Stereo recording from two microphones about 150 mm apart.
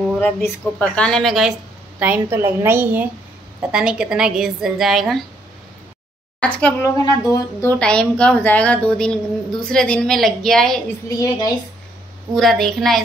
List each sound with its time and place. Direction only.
0.4 s a woman's voice: 10° left (ahead or behind)
2.0 s a woman's voice: 10° right (ahead or behind)
6.4 s a woman's voice: 10° left (ahead or behind)
6.8 s speech: 20° left (ahead or behind)
7.8 s a woman's voice: 5° left (ahead or behind)
11.1 s speech: 25° left (ahead or behind)
12.4 s a woman's voice: centre (ahead or behind)